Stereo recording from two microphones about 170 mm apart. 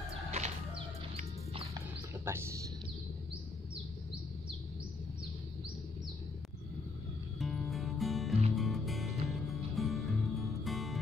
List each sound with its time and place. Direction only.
0.3 s bird: 40° right (ahead or behind)
2.2 s a sound: 15° right (ahead or behind)
7.3 s music: centre (ahead or behind)